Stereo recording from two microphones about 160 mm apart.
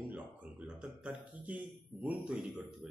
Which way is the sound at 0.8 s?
10° right (ahead or behind).